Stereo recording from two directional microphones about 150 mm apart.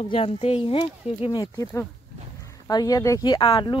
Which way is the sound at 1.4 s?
20° left (ahead or behind).